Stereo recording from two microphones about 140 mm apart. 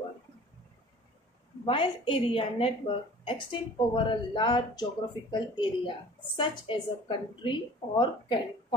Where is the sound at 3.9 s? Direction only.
35° left (ahead or behind).